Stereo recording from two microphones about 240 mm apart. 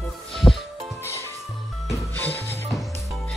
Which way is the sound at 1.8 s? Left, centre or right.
Centre.